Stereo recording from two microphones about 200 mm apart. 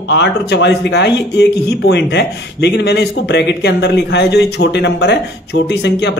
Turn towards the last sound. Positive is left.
turn(degrees=55)  # may be behind; listen again after turning